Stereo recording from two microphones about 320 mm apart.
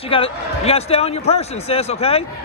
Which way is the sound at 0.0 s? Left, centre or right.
Centre.